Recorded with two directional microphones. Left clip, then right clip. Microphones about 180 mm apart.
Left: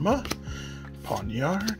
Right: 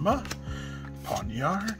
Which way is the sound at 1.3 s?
10° left (ahead or behind).